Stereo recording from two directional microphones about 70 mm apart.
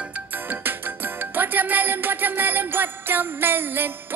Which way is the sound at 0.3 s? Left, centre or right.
Right.